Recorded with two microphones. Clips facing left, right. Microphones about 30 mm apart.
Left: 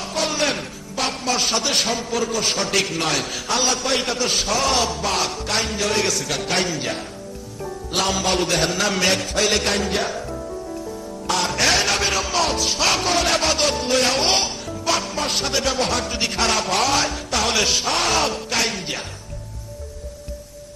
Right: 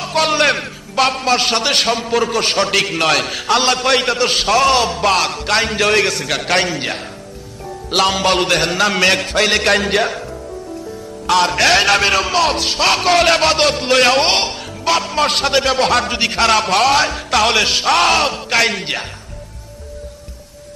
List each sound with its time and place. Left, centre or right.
0.0 s a man's voice: right
2.7 s a man's voice: right
3.0 s a man's voice: right
4.7 s a man's voice: right
5.0 s a man's voice: right
7.9 s a man's voice: right
11.2 s a man's voice: right
16.2 s a man's voice: right
17.6 s a man's voice: right
17.8 s a man's voice: right